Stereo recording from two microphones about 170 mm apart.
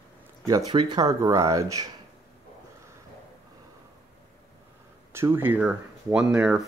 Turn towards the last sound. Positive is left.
turn(degrees=-5)  # may be behind; listen again after turning